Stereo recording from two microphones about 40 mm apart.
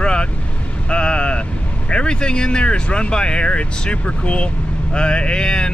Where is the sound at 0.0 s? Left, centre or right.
Left.